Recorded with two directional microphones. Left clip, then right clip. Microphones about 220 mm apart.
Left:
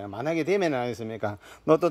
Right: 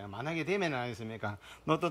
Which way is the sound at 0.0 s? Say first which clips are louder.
Left 9 dB; 30° left (ahead or behind).